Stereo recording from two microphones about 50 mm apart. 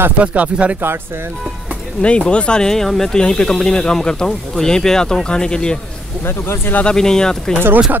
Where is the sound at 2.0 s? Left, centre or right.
Left.